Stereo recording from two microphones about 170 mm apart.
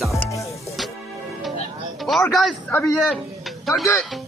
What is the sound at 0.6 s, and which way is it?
Music, centre (ahead or behind).